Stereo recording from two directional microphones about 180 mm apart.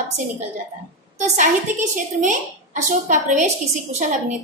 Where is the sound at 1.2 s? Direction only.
45° right (ahead or behind).